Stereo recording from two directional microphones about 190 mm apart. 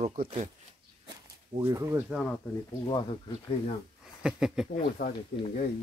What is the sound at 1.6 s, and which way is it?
Speech, 15° right (ahead or behind).